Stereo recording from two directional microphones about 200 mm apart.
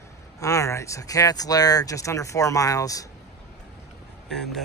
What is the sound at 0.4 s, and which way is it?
Speech, 15° left (ahead or behind).